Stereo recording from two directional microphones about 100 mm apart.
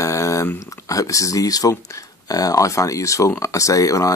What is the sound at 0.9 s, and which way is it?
Speech, 35° left (ahead or behind).